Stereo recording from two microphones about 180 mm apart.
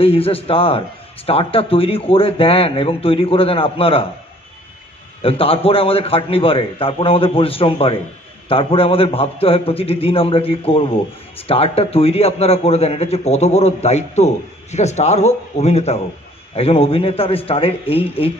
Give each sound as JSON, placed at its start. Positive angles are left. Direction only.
{"t": 0.0, "sound": "a man's voice", "side_deg": 30}
{"t": 5.2, "sound": "a man's voice", "side_deg": 30}